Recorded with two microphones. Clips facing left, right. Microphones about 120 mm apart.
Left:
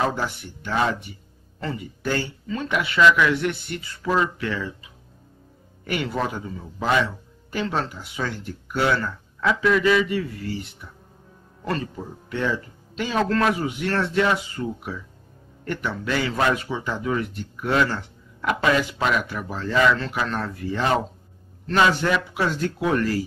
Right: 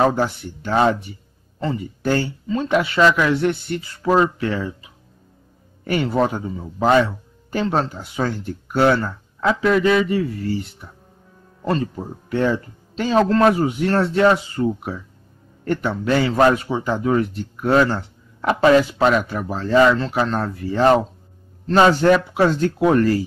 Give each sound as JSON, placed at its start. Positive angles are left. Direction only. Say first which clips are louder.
{"t": 0.0, "sound": "speech", "louder": "right 7 dB", "side_deg": -40}
{"t": 2.0, "sound": "speech", "louder": "right 5 dB", "side_deg": -30}
{"t": 5.9, "sound": "speech", "louder": "right 7 dB", "side_deg": -35}
{"t": 11.8, "sound": "speech", "louder": "right 6 dB", "side_deg": -40}